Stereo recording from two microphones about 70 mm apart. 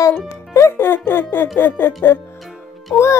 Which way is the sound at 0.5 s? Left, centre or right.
Left.